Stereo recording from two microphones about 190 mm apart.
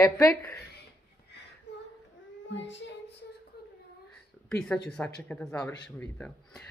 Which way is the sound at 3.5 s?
55° left (ahead or behind).